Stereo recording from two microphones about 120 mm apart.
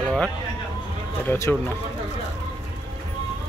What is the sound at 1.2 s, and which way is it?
Speech, 15° left (ahead or behind).